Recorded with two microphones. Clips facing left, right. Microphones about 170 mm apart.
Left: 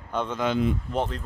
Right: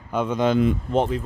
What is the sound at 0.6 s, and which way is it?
Speech, 60° right (ahead or behind).